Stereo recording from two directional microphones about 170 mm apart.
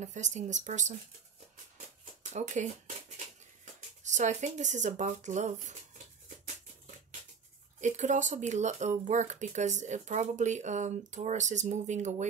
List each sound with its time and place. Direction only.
0.0 s speech: 45° right (ahead or behind)
2.3 s speech: 45° right (ahead or behind)
4.0 s speech: 45° right (ahead or behind)
7.8 s speech: 45° right (ahead or behind)